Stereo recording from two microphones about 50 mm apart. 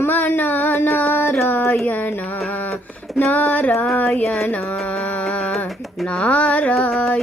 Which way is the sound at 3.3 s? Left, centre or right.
Left.